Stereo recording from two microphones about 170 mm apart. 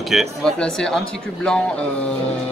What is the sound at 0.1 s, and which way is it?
Speech, centre (ahead or behind).